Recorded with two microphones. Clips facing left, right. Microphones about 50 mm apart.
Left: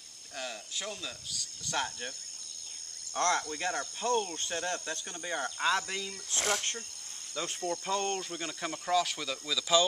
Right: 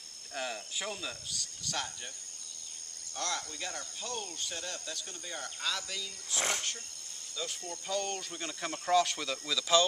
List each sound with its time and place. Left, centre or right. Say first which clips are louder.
0.3 s speech: right 2 dB; centre
1.7 s speech: left 4 dB; left
3.2 s speech: left 8 dB; left
6.3 s speech: left 2 dB; centre
7.6 s speech: left 5 dB; left
8.2 s speech: left 2 dB; centre